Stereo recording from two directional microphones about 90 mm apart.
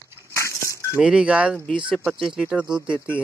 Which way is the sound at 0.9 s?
10° right (ahead or behind).